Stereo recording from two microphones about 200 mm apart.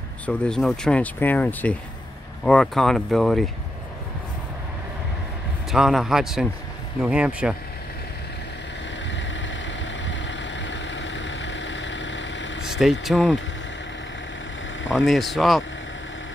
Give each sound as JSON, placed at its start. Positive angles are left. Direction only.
{"t": 0.3, "sound": "speech", "side_deg": 5}
{"t": 5.7, "sound": "speech", "side_deg": 0}
{"t": 9.1, "sound": "vehicle", "side_deg": 65}
{"t": 12.6, "sound": "vehicle", "side_deg": 0}
{"t": 13.0, "sound": "speech", "side_deg": 0}
{"t": 14.9, "sound": "speech", "side_deg": 0}